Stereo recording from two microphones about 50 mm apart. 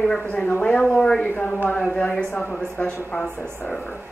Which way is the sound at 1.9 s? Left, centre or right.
Centre.